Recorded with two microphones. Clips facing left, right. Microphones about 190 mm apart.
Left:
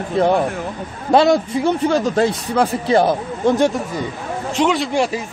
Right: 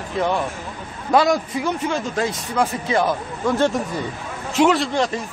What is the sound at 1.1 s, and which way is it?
A man's voice, 25° left (ahead or behind).